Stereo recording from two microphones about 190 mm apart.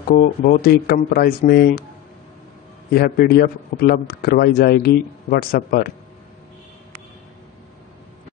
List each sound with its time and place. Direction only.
0.1 s a man's voice: 50° left (ahead or behind)
2.9 s a man's voice: 55° left (ahead or behind)